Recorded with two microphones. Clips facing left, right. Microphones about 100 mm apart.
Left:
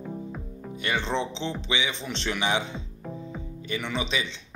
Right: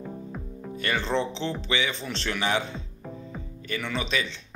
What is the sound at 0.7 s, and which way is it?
Speech, 20° left (ahead or behind).